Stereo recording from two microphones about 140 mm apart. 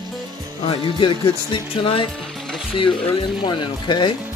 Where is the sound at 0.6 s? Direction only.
40° left (ahead or behind).